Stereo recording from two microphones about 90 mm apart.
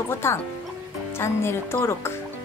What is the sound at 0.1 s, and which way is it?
Speech, 30° left (ahead or behind).